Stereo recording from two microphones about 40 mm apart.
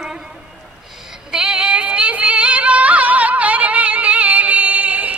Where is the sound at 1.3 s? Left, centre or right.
Centre.